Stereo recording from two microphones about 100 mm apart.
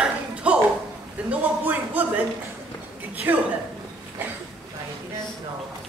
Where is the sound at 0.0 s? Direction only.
10° right (ahead or behind).